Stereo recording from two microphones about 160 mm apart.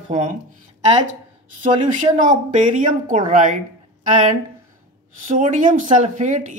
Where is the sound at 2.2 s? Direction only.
50° right (ahead or behind).